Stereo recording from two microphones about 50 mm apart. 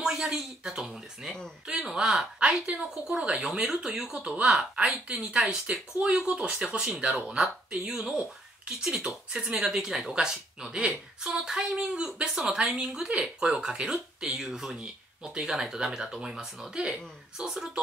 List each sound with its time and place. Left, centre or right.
0.0 s a sound: centre
0.4 s speech: centre
16.7 s speech: centre